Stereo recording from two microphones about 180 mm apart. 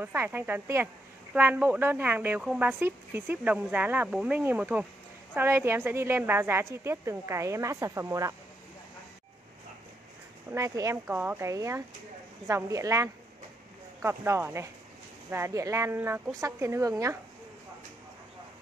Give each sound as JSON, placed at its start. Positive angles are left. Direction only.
{"t": 0.0, "sound": "speech", "side_deg": -10}
{"t": 10.5, "sound": "speech", "side_deg": -15}